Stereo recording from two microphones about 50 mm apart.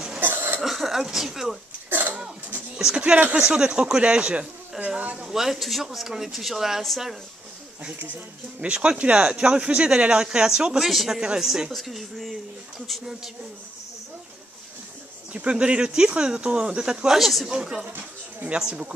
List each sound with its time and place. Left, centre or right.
0.2 s cough: right
0.6 s cough: centre
1.0 s speech: centre
1.9 s cough: right
3.3 s speech: centre
5.3 s a woman's voice: centre
8.5 s speech: right
10.8 s a woman's voice: centre
11.7 s speech: centre
15.3 s speech: right
17.2 s a woman's voice: centre
17.5 s speech: centre